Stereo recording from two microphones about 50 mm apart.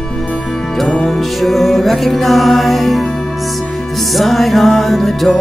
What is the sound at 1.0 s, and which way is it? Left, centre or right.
Music, centre.